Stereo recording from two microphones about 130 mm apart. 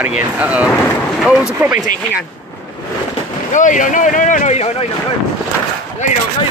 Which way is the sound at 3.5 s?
75° left (ahead or behind).